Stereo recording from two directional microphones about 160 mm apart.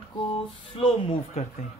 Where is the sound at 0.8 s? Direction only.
35° left (ahead or behind).